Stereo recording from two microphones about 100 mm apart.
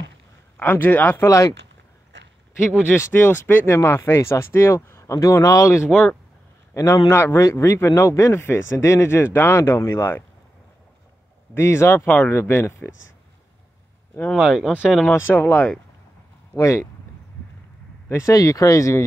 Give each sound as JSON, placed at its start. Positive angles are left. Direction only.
{"t": 0.6, "sound": "speech", "side_deg": 15}
{"t": 2.7, "sound": "speech", "side_deg": 25}
{"t": 5.9, "sound": "speech", "side_deg": 5}
{"t": 6.7, "sound": "a man's voice", "side_deg": 30}
{"t": 11.5, "sound": "speech", "side_deg": 25}
{"t": 14.3, "sound": "speech", "side_deg": -5}
{"t": 15.0, "sound": "speech", "side_deg": 20}
{"t": 18.0, "sound": "speech", "side_deg": 30}